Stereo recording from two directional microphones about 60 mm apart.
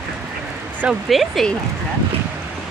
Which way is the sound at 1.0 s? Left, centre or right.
Centre.